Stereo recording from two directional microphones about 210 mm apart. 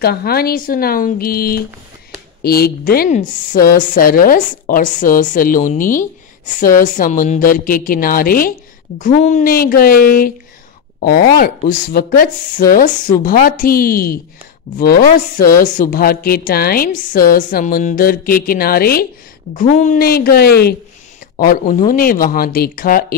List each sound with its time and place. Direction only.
0.0 s a woman's voice: 45° left (ahead or behind)